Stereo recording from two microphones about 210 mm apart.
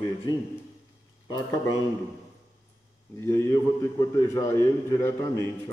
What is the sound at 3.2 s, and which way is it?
A man's voice, 15° left (ahead or behind).